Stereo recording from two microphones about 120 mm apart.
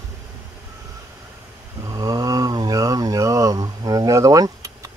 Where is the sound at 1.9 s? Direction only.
30° right (ahead or behind).